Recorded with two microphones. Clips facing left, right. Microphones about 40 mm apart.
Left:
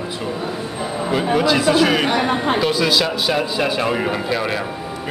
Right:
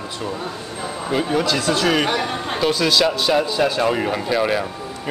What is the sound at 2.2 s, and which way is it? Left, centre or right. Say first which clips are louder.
Speech: left 6 dB; left.